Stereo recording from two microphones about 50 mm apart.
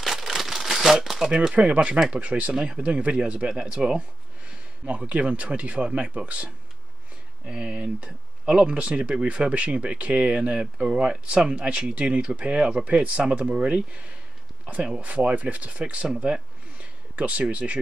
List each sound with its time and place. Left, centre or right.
0.0 s crumpling: centre
1.5 s speech: right
17.1 s speech: right